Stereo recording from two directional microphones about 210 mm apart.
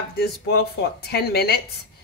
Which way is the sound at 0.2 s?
50° left (ahead or behind).